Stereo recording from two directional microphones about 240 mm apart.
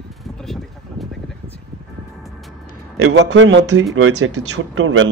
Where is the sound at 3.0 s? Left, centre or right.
Right.